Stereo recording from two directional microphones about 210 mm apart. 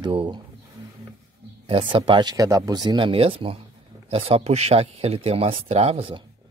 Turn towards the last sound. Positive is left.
turn(degrees=-30)  # may be behind; listen again after turning